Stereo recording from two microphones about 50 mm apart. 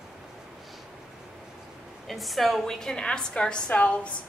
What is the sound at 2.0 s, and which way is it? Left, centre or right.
A woman's voice, centre.